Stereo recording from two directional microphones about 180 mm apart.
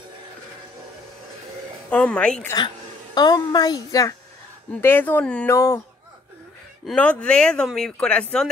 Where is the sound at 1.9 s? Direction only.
5° left (ahead or behind).